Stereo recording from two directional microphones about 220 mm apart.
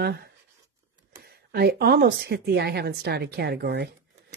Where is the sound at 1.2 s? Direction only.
45° right (ahead or behind).